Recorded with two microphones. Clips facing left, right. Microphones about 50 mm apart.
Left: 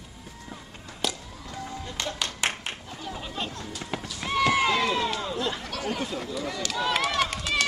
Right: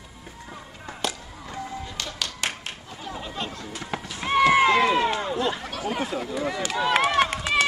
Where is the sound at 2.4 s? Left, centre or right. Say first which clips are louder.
Left 2 dB; left.